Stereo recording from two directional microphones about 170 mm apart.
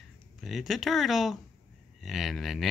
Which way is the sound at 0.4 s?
Centre (ahead or behind).